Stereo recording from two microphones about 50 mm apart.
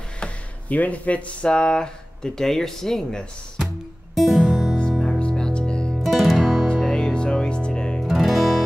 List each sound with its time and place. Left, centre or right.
0.7 s speech: left; by 3.3 s centre
3.5 s music: centre
5.0 s music: left
5.9 s music: centre
6.8 s music: centre
8.1 s music: centre